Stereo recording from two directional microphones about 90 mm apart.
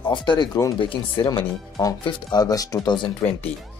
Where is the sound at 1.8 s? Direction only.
40° left (ahead or behind).